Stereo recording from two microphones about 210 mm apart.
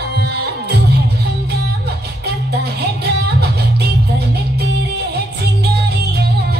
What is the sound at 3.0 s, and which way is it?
Music, 50° right (ahead or behind).